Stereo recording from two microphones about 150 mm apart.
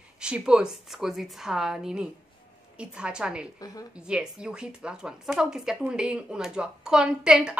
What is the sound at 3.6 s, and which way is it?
Speech, 25° left (ahead or behind).